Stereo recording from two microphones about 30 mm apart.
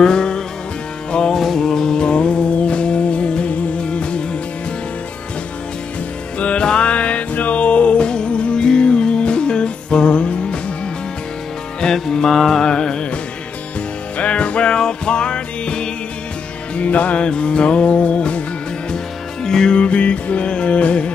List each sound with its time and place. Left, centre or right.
0.0 s music: left
1.3 s music: centre
2.0 s music: left
6.6 s music: left
6.9 s music: left
8.0 s music: left
11.9 s music: left
12.3 s music: centre
12.6 s music: left
14.1 s music: left
16.7 s music: left
17.2 s music: left
19.4 s music: centre
19.7 s music: left